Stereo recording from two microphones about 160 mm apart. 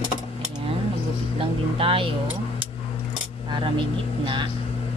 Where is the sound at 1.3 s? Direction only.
35° right (ahead or behind).